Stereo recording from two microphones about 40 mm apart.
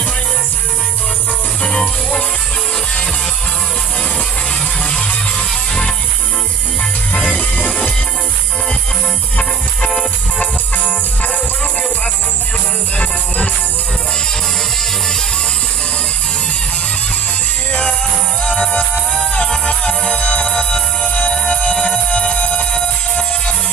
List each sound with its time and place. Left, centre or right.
1.6 s music: left
5.5 s music: centre
7.2 s music: left
9.4 s music: centre
10.4 s music: left
18.4 s music: left
21.1 s music: left